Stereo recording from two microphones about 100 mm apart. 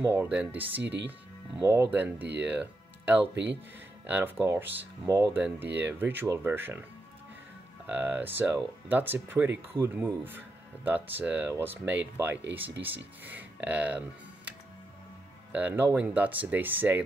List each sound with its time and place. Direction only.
0.0 s speech: 20° right (ahead or behind)
1.9 s speech: 15° right (ahead or behind)
5.4 s speech: 15° right (ahead or behind)
7.8 s speech: 20° right (ahead or behind)
15.5 s speech: 15° right (ahead or behind)